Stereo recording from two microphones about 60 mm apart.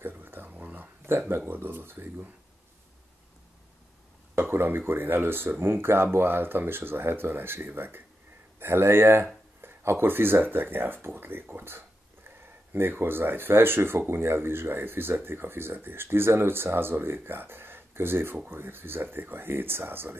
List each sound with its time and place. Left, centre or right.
0.0 s a sound: right
1.3 s speech: right
4.4 s speech: right